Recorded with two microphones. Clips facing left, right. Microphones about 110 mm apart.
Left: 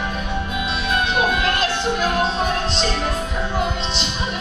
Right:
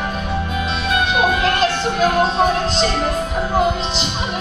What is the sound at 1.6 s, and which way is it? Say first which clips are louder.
Music: right 4 dB; 35° right (ahead or behind).